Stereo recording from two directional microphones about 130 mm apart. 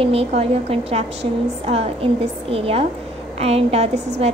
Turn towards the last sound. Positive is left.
turn(degrees=-55)  # may be behind; listen again after turning